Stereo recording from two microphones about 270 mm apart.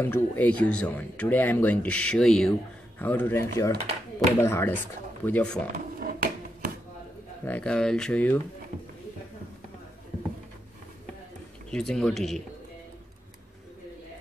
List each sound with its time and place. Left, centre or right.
0.0 s speech: centre
5.9 s a sound: right
7.4 s speech: centre
11.7 s speech: centre